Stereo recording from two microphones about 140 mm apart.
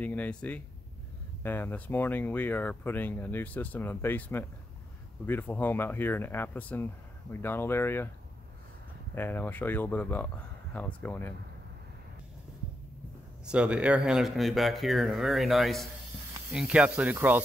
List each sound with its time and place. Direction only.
0.0 s speech: 10° left (ahead or behind)
9.1 s speech: 15° left (ahead or behind)
13.5 s speech: 5° right (ahead or behind)